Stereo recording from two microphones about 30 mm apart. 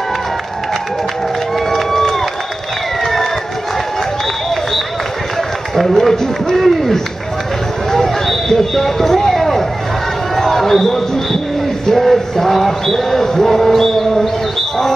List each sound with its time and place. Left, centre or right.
1.7 s run: centre
5.8 s run: centre
8.0 s a sound: centre
10.3 s run: centre
11.9 s music: centre